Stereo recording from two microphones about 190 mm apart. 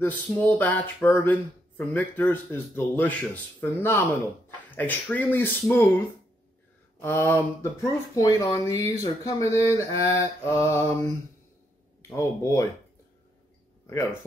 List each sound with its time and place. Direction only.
0.0 s speech: 10° left (ahead or behind)
7.0 s speech: 10° left (ahead or behind)
12.0 s speech: 15° left (ahead or behind)